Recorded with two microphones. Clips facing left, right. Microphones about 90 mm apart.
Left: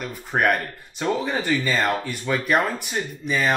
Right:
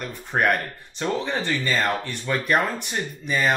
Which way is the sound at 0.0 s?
5° left (ahead or behind).